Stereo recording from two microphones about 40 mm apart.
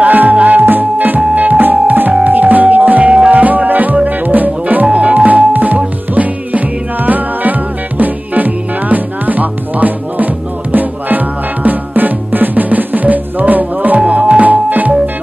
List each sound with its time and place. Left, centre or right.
0.0 s music: right
0.7 s music: right
14.0 s music: right